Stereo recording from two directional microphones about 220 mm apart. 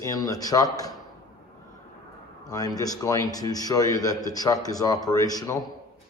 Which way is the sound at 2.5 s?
15° left (ahead or behind).